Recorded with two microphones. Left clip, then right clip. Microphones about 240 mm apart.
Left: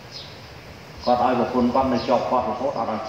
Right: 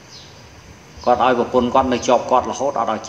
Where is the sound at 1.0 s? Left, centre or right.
Right.